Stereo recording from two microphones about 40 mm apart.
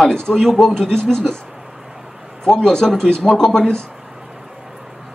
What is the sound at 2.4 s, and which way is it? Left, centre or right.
Speech, centre.